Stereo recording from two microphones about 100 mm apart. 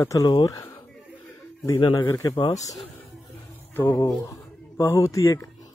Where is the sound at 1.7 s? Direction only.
50° left (ahead or behind).